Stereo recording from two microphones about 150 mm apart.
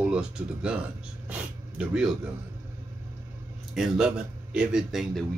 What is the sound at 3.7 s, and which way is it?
Speech, centre (ahead or behind).